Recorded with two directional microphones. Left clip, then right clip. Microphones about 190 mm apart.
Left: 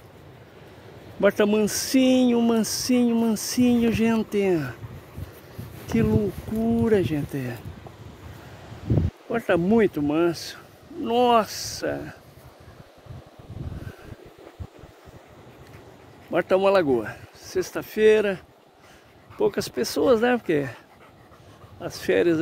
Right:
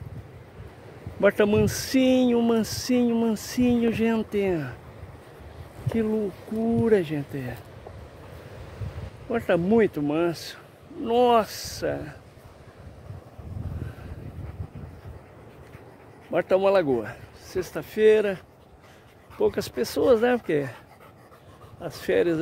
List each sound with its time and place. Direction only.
1.2 s speech: 10° left (ahead or behind)
5.9 s speech: 25° left (ahead or behind)
6.8 s speech: 10° left (ahead or behind)
9.3 s speech: 20° left (ahead or behind)
16.3 s speech: 20° left (ahead or behind)
21.8 s speech: 25° left (ahead or behind)